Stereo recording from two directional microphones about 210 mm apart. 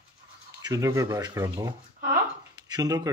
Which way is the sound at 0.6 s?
15° right (ahead or behind).